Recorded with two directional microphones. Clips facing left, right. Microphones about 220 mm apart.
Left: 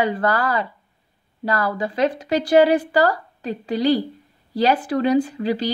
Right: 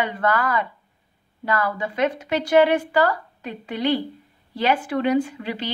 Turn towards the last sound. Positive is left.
turn(degrees=35)  # may be behind; listen again after turning